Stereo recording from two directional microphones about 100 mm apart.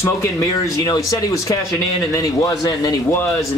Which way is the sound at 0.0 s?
35° left (ahead or behind).